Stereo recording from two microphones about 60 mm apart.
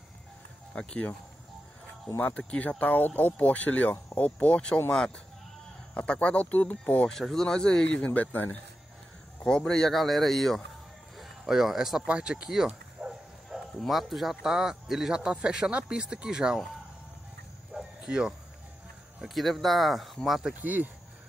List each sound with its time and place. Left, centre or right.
0.7 s speech: centre
2.1 s speech: left
5.9 s speech: left
7.1 s speech: centre; by 8.5 s left
9.4 s speech: centre
12.1 s speech: centre
17.7 s bow-wow: centre
19.2 s speech: centre
20.6 s speech: right